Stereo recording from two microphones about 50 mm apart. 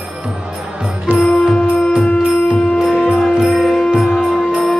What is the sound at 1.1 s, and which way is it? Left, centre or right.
Music, right.